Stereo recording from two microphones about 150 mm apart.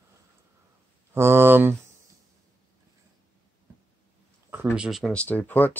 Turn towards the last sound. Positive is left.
turn(degrees=10)  # may be behind; listen again after turning